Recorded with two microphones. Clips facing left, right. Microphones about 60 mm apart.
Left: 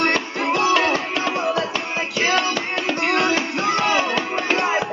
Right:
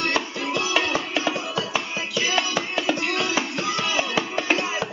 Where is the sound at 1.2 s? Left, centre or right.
Left.